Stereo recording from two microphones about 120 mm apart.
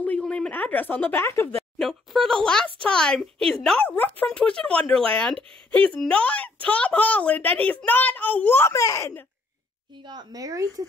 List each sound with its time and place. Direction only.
0.0 s a woman's voice: 10° left (ahead or behind)
1.8 s a woman's voice: centre (ahead or behind); by 9.2 s 25° left (ahead or behind)
10.0 s a woman's voice: 35° right (ahead or behind)